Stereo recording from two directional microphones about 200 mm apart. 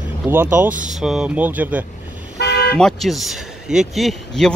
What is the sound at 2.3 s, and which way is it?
Toot, 55° left (ahead or behind).